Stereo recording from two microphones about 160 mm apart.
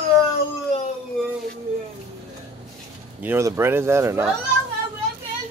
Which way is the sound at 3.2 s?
15° right (ahead or behind).